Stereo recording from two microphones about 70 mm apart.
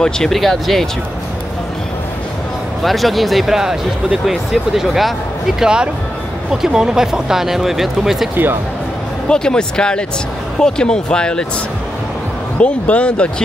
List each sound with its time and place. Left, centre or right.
0.0 s speech: centre
2.8 s speech: centre
9.3 s speech: centre
12.5 s speech: centre